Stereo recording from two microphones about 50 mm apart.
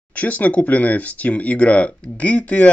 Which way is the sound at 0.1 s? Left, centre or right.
Left.